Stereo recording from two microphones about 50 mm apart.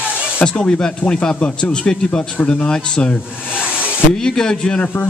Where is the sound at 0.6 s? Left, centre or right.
Centre.